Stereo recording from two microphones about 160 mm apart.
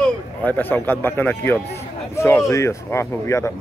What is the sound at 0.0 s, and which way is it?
Speech, 10° left (ahead or behind).